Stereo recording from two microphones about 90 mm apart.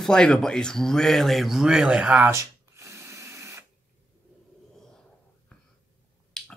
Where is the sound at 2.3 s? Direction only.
35° right (ahead or behind).